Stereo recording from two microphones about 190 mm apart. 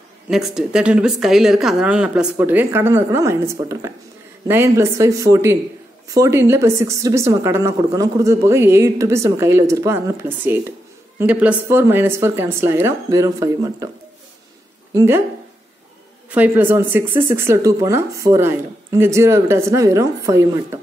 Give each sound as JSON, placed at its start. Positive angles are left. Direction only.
{"t": 0.3, "sound": "a woman's voice", "side_deg": 0}
{"t": 15.0, "sound": "a woman's voice", "side_deg": -15}
{"t": 16.3, "sound": "a woman's voice", "side_deg": -10}